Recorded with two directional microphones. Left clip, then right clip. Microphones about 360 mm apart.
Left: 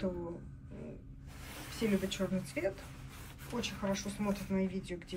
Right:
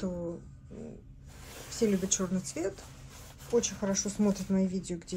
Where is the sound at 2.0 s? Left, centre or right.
Centre.